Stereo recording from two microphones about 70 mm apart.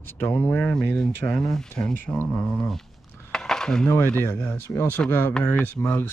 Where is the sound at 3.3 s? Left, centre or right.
Centre.